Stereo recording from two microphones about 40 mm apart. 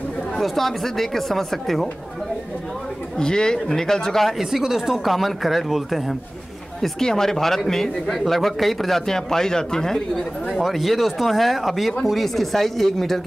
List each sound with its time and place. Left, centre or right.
0.4 s speech: centre
3.2 s speech: centre
4.4 s speech: centre
6.8 s speech: centre
10.5 s speech: centre